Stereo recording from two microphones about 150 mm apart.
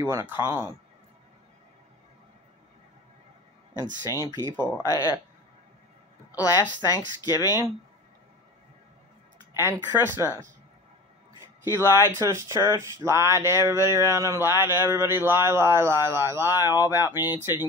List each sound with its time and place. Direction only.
0.0 s speech: 15° right (ahead or behind)
3.7 s speech: 25° left (ahead or behind)
6.3 s speech: 25° left (ahead or behind)
9.6 s speech: 15° right (ahead or behind)
11.8 s speech: 20° left (ahead or behind)
12.2 s speech: 20° right (ahead or behind)